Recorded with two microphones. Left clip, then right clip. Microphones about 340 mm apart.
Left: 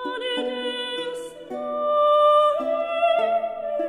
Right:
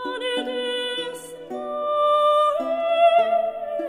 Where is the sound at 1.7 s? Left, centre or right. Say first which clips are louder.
Left 2 dB; left.